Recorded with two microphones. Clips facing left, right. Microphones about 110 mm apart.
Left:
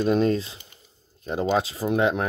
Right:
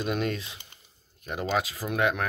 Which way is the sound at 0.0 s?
30° left (ahead or behind).